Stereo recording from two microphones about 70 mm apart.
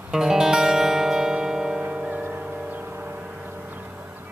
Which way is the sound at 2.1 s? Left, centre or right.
Right.